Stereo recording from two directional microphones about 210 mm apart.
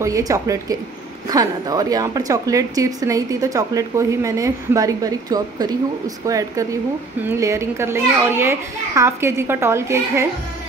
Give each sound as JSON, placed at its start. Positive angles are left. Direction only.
{"t": 0.0, "sound": "a woman's voice", "side_deg": -15}